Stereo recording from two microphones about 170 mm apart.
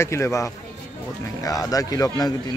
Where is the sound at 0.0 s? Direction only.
15° left (ahead or behind).